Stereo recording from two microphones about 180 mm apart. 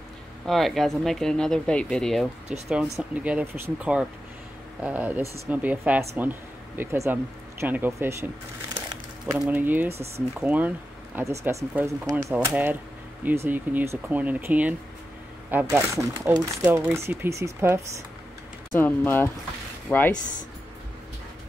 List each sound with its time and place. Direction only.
0.5 s speech: centre (ahead or behind)
9.4 s speech: 10° right (ahead or behind)
18.7 s speech: 10° left (ahead or behind)